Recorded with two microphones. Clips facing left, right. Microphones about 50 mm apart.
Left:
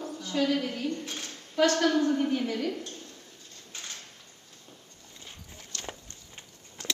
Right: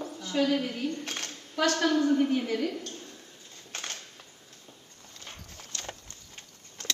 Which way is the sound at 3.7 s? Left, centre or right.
Right.